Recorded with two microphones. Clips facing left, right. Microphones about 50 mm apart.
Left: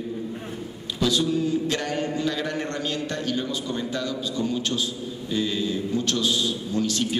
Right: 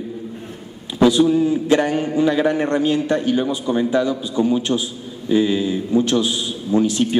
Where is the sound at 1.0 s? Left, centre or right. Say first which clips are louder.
Right 9 dB; centre.